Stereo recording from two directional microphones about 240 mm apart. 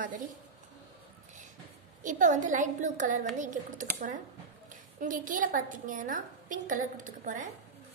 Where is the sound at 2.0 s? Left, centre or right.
Right.